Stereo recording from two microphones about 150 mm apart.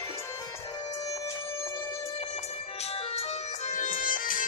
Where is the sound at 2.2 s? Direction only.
45° left (ahead or behind).